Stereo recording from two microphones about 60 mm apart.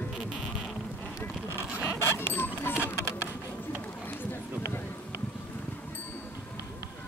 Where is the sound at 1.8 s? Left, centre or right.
Left.